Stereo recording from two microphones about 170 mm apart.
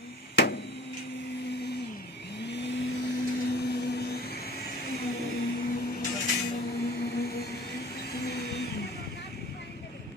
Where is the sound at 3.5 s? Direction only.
70° left (ahead or behind).